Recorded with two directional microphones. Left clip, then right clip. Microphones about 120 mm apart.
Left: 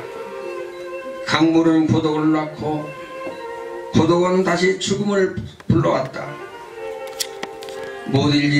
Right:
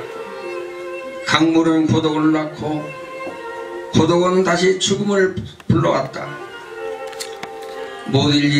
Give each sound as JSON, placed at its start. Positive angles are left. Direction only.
{"t": 1.2, "sound": "a man's voice", "side_deg": -40}
{"t": 3.9, "sound": "a man's voice", "side_deg": -40}
{"t": 8.1, "sound": "a man's voice", "side_deg": -40}